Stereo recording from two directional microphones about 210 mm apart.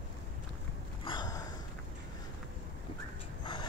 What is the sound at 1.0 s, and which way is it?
Gasp, 20° left (ahead or behind).